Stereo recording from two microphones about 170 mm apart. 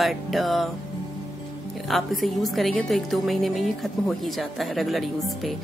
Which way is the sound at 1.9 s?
Centre (ahead or behind).